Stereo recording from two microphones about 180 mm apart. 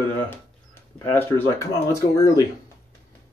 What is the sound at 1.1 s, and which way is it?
Speech, 10° left (ahead or behind).